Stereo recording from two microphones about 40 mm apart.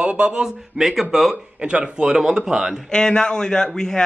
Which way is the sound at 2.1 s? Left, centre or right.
Centre.